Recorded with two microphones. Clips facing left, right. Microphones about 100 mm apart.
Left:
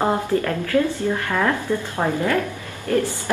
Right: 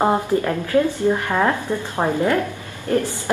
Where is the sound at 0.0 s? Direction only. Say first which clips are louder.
Right 2 dB; 20° right (ahead or behind).